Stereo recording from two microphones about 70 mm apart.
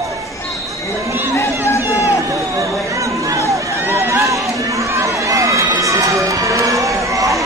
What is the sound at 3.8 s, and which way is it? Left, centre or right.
Run, right.